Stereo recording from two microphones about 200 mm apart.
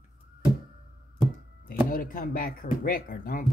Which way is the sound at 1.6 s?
45° left (ahead or behind).